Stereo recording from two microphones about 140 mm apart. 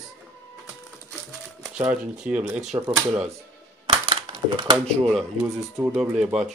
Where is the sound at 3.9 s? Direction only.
35° right (ahead or behind).